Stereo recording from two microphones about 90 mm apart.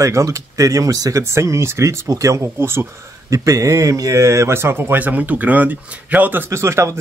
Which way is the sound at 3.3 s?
40° right (ahead or behind).